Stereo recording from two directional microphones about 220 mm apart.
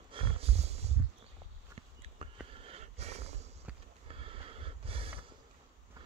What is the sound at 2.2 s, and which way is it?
Sniff, 25° right (ahead or behind).